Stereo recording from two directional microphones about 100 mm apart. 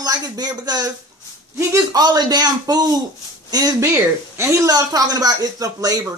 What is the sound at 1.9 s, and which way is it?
Speech, 45° right (ahead or behind).